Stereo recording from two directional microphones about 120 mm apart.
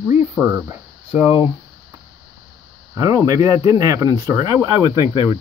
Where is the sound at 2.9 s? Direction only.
30° right (ahead or behind).